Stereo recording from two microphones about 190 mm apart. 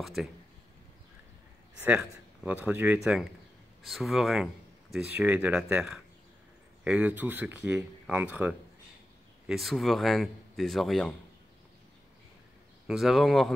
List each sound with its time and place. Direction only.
0.0 s a man's voice: centre (ahead or behind)
1.8 s a man's voice: 10° right (ahead or behind)
12.8 s a man's voice: centre (ahead or behind)